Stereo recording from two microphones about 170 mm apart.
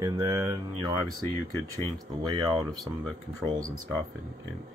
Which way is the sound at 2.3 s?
25° right (ahead or behind).